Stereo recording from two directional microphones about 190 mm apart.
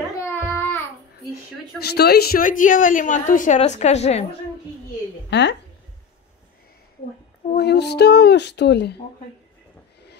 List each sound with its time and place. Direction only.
0.2 s child singing: 10° left (ahead or behind)
1.8 s a woman's voice: 55° left (ahead or behind); by 4.2 s 35° left (ahead or behind)
5.3 s speech: 65° left (ahead or behind)
7.5 s speech: 60° left (ahead or behind)